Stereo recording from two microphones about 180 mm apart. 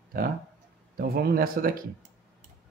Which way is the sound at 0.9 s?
60° right (ahead or behind).